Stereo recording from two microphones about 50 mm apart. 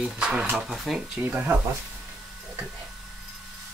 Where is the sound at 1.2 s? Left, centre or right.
Right.